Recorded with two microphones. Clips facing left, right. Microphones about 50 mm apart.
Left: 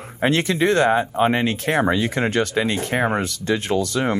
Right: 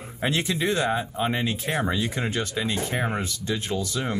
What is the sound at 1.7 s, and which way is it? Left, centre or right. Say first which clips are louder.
Speech: left 7 dB; left.